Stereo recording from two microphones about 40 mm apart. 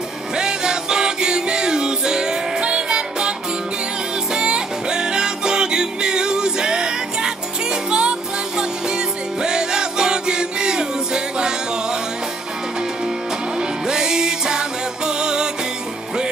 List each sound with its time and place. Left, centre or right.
0.4 s music: centre
13.6 s music: centre